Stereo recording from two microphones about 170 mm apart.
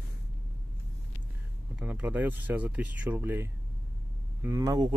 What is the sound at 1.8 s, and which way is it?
Speech, 10° right (ahead or behind).